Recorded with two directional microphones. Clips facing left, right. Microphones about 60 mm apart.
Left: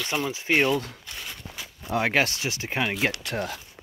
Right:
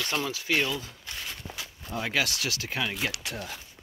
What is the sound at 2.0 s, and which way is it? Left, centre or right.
Speech, left.